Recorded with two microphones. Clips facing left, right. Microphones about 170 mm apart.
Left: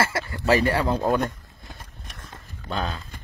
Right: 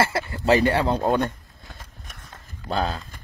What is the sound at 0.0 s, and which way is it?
Speech, 25° right (ahead or behind).